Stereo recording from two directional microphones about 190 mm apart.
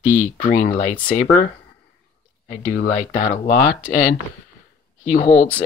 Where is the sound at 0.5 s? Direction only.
45° left (ahead or behind).